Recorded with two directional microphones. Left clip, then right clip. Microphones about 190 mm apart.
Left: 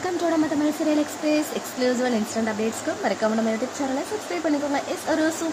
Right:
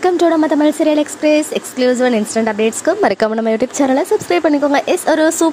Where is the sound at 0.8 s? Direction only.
40° right (ahead or behind).